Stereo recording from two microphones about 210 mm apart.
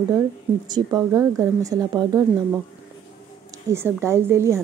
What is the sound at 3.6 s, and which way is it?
Speech, 10° right (ahead or behind).